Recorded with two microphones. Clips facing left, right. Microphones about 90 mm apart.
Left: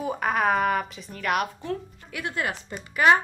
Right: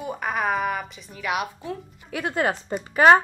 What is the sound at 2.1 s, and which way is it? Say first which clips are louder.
Speech: right 5 dB; 30° right (ahead or behind).